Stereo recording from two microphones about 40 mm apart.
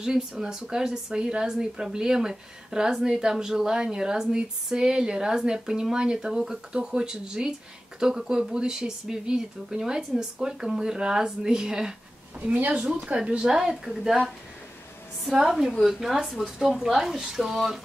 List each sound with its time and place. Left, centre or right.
0.0 s speech: centre
12.7 s speech: right
13.5 s speech: centre
15.3 s speech: centre